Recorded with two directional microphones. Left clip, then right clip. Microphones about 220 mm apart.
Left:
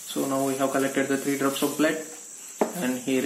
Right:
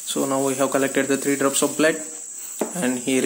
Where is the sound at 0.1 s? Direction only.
50° right (ahead or behind).